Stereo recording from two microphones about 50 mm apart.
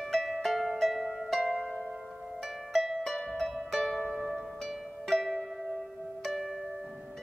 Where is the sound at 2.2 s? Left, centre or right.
Centre.